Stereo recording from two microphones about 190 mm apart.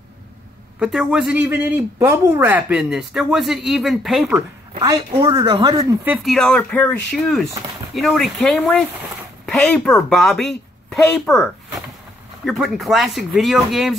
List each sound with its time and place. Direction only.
0.7 s speech: 5° right (ahead or behind)
4.7 s speech: 20° right (ahead or behind)
6.0 s speech: 5° right (ahead or behind)